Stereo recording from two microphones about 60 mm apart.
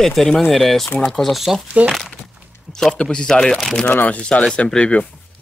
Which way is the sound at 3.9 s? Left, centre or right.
Left.